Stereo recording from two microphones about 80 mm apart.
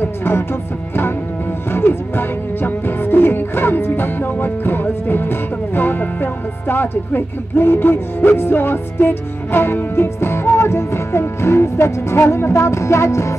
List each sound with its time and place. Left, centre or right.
0.0 s music: left
1.7 s music: left